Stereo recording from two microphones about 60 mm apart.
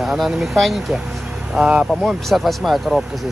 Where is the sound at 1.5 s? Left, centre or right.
Centre.